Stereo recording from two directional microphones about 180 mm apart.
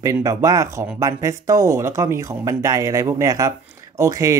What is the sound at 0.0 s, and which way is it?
Speech, 20° right (ahead or behind).